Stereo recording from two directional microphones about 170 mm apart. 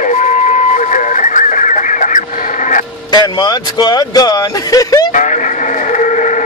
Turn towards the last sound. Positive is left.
turn(degrees=45)  # may be behind; listen again after turning